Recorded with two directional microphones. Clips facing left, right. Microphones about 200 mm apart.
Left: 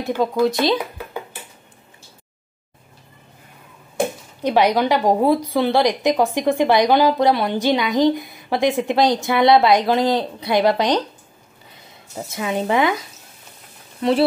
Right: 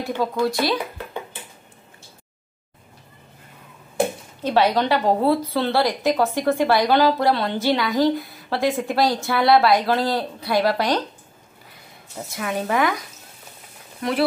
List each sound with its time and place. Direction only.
0.0 s speech: 20° left (ahead or behind)
4.4 s a woman's voice: 15° left (ahead or behind)
12.2 s speech: 20° left (ahead or behind)
14.0 s speech: 25° left (ahead or behind)